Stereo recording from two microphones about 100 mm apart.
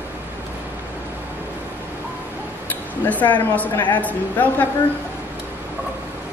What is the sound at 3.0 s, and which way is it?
Speech, 15° left (ahead or behind).